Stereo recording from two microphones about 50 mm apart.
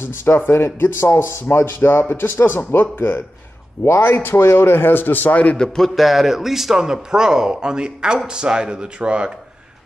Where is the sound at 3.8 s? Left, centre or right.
Left.